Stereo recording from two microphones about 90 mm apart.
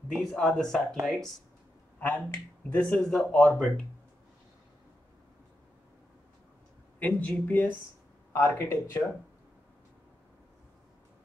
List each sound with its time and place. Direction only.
0.1 s speech: 5° left (ahead or behind)
2.0 s speech: 15° left (ahead or behind)
7.0 s speech: 15° left (ahead or behind)